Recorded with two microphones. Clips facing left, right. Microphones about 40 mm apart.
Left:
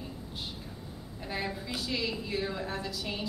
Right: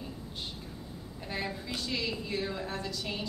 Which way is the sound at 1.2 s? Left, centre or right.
Centre.